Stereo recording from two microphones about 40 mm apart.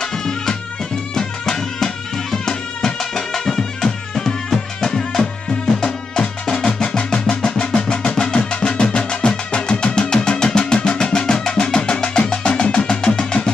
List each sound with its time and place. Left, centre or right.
0.0 s music: centre